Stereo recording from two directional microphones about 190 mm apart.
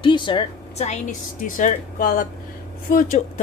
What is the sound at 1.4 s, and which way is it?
Speech, 45° left (ahead or behind).